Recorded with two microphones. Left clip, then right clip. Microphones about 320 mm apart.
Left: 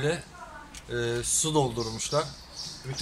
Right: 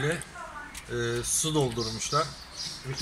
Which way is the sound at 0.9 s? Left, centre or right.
Left.